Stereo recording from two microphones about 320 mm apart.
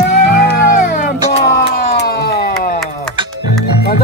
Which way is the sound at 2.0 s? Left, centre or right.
Left.